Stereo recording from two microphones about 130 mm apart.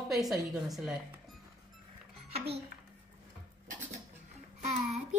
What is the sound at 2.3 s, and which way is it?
Speech, 50° right (ahead or behind).